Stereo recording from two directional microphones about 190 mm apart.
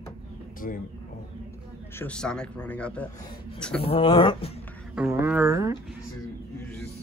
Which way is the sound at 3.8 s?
30° left (ahead or behind).